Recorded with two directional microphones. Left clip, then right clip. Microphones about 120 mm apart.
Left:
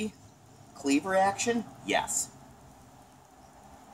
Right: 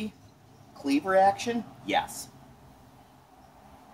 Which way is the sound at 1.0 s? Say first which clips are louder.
Right 5 dB; 15° left (ahead or behind).